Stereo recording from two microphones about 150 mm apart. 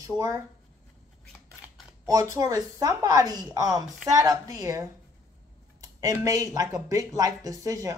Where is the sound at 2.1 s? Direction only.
20° right (ahead or behind).